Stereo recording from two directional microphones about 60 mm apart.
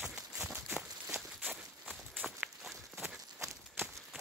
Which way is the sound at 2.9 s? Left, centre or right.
Centre.